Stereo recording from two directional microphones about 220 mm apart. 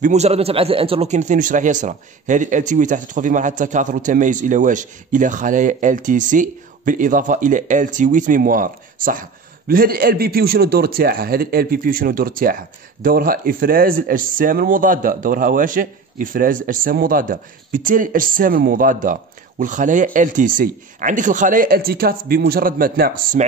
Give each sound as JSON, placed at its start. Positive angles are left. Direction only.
{"t": 0.0, "sound": "a man's voice", "side_deg": -30}